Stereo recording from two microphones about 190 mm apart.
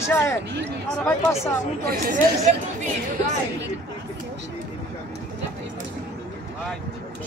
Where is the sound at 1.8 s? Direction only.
45° right (ahead or behind).